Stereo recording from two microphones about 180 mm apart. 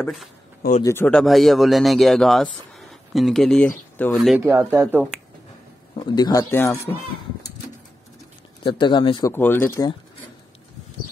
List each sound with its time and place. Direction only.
0.8 s speech: 10° left (ahead or behind)
4.5 s speech: 15° right (ahead or behind)
6.0 s speech: 20° left (ahead or behind)
8.6 s speech: 25° left (ahead or behind)
9.3 s speech: 10° left (ahead or behind)